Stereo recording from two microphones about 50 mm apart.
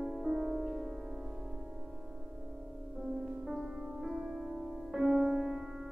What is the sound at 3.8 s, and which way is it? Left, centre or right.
Music, centre.